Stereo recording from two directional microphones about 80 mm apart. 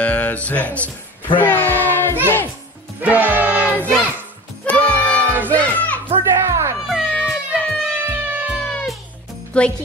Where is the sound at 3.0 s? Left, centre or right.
Centre.